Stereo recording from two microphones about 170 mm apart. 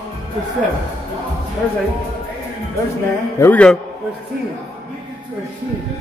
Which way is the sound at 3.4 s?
10° left (ahead or behind).